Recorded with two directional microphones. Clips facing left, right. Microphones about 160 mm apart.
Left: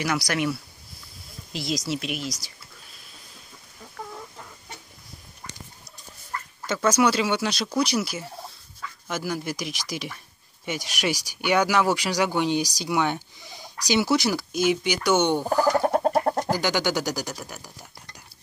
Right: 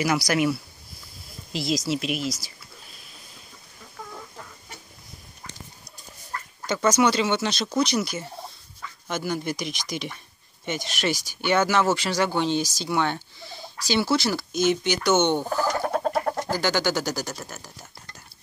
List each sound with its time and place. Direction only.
0.0 s speech: 5° right (ahead or behind)
6.6 s speech: 5° left (ahead or behind)
15.5 s bird: 40° left (ahead or behind)
16.4 s speech: 15° left (ahead or behind)